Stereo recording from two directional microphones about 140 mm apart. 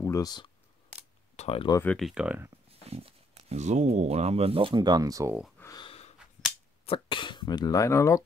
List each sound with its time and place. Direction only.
0.0 s speech: 25° left (ahead or behind)
1.3 s a sound: 45° left (ahead or behind)
2.0 s speech: 5° right (ahead or behind)
2.9 s speech: 45° right (ahead or behind); by 5.3 s 25° right (ahead or behind)
5.8 s a sound: 45° left (ahead or behind)
6.9 s speech: 35° left (ahead or behind); by 8.2 s 20° left (ahead or behind)